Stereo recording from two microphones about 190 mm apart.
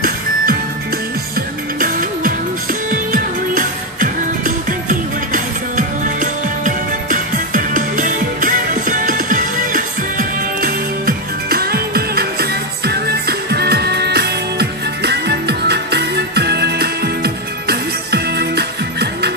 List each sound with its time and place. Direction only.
2.9 s music: 45° right (ahead or behind)